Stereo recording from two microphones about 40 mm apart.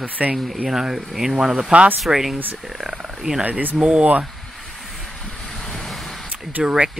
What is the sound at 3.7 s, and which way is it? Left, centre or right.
Speech, right.